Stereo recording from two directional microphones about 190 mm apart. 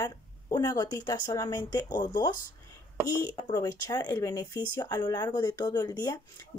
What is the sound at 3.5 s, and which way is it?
Speech, 20° left (ahead or behind).